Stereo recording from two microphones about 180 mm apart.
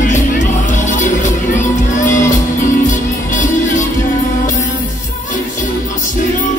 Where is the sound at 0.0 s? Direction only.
45° left (ahead or behind).